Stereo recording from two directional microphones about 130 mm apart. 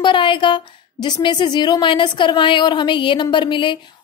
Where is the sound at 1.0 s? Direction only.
35° left (ahead or behind).